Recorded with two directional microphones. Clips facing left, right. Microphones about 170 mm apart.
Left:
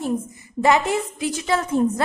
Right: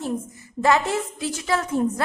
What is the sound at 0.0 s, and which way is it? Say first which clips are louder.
A woman's voice: left 3 dB; 15° left (ahead or behind).